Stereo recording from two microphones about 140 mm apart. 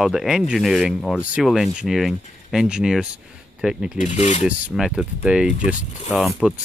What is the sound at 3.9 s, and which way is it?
Speech, 55° left (ahead or behind).